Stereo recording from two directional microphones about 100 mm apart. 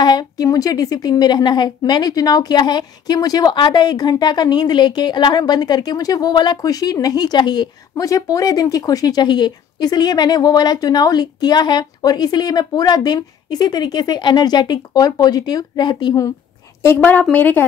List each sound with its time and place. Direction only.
0.0 s a woman's voice: 40° left (ahead or behind)
16.8 s a woman's voice: 20° left (ahead or behind)